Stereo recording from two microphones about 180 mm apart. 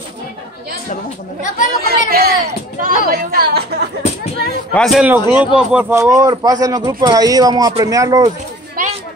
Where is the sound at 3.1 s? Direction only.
55° right (ahead or behind).